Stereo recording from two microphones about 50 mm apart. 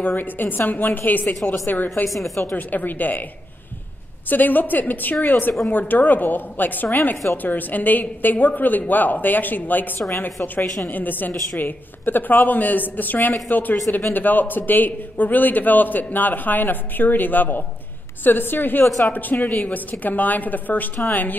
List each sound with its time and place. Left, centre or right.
0.0 s a man's voice: left
2.0 s a woman's voice: centre
2.5 s a man's voice: left
4.3 s a man's voice: left
18.9 s speech: centre
19.6 s a man's voice: left